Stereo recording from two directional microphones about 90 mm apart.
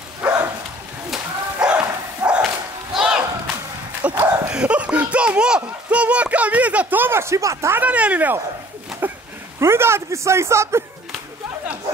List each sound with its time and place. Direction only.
0.2 s dog: 15° right (ahead or behind)
1.1 s bow-wow: 10° right (ahead or behind)
2.9 s a sound: 10° right (ahead or behind)
4.5 s a child's voice: 10° right (ahead or behind); by 7.7 s 35° right (ahead or behind)
7.7 s a child's voice: 15° right (ahead or behind)
9.0 s a sound: 20° right (ahead or behind)
9.6 s speech: 30° right (ahead or behind)